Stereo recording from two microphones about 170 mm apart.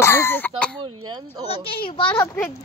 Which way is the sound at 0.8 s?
30° right (ahead or behind).